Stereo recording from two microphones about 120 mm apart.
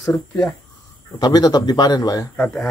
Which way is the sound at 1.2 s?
35° left (ahead or behind).